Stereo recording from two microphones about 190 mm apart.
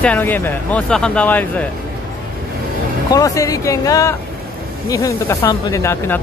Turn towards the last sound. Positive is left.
turn(degrees=10)  # may be behind; listen again after turning